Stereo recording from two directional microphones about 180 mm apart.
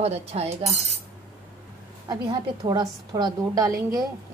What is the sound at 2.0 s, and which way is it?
A woman's voice, 25° right (ahead or behind).